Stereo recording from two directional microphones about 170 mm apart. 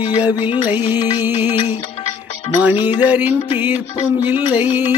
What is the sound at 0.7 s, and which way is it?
Music, 10° right (ahead or behind).